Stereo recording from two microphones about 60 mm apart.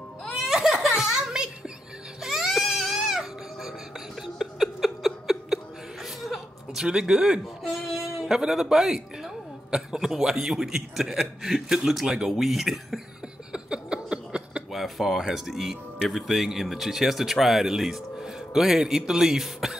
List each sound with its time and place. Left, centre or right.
0.4 s giggle: centre
2.2 s baby cry: centre
4.4 s a sound: centre
6.2 s speech: centre
13.5 s a sound: centre
14.7 s speech: centre